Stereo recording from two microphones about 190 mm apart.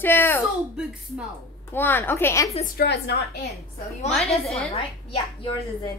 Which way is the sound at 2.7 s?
55° left (ahead or behind).